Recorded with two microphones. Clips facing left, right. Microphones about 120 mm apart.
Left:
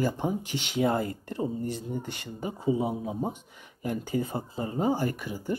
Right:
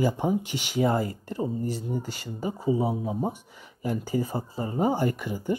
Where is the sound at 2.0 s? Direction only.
25° left (ahead or behind).